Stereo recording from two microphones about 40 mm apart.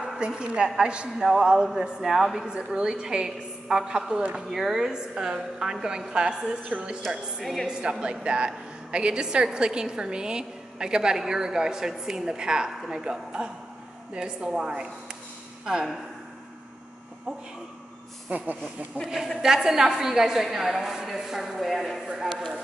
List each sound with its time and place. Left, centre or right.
0.2 s a woman's voice: right
1.1 s a woman's voice: centre
1.4 s a woman's voice: centre
2.4 s a woman's voice: right
7.6 s a woman's voice: right
18.3 s speech: right
19.4 s a woman's voice: centre
21.5 s a woman's voice: centre